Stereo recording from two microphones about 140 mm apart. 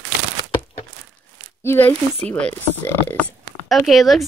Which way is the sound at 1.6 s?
15° left (ahead or behind).